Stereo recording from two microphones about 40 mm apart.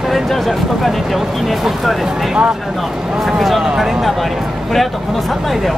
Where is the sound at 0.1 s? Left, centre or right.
Centre.